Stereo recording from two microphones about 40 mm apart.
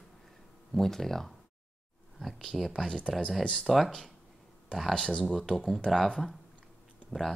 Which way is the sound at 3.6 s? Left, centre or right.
Centre.